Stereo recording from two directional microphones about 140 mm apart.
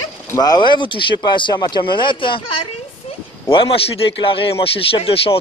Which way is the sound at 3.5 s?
40° left (ahead or behind).